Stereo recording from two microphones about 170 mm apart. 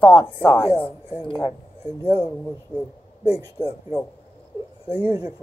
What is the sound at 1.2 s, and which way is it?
Speech, 30° left (ahead or behind).